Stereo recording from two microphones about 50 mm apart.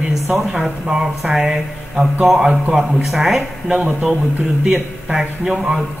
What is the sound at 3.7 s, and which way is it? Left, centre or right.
Speech, centre.